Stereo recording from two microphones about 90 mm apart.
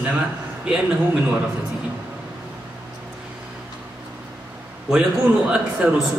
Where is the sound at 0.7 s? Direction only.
10° right (ahead or behind).